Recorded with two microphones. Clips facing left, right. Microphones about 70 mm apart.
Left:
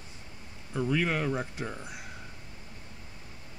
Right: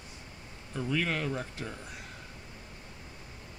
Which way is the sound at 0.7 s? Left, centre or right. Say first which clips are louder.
Left 3 dB; centre.